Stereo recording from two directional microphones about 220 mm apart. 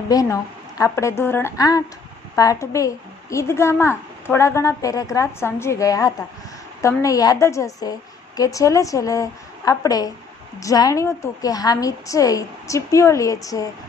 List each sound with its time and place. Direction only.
0.1 s a woman's voice: 15° left (ahead or behind)